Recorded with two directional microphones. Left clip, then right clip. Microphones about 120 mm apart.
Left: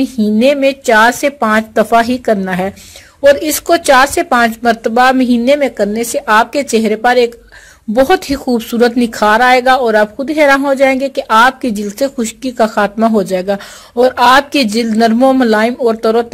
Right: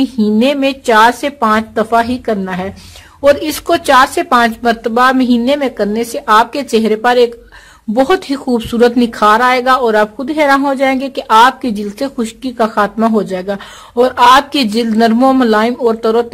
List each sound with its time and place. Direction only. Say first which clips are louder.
0.0 s speech: left 1 dB; 25° left (ahead or behind)
1.4 s speech: even; 40° left (ahead or behind)
3.3 s speech: left 2 dB; 25° left (ahead or behind)
13.9 s speech: right 1 dB; 20° left (ahead or behind)